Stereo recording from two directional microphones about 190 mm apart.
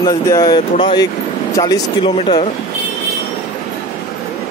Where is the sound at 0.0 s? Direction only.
20° left (ahead or behind).